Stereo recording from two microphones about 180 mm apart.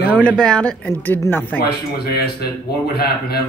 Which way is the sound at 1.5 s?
60° left (ahead or behind).